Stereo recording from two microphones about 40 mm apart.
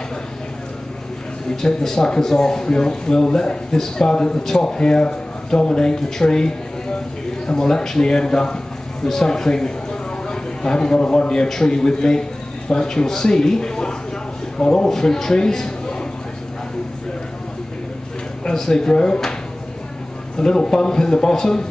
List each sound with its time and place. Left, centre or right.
1.6 s a man's voice: centre
18.4 s speech: centre
20.3 s speech: centre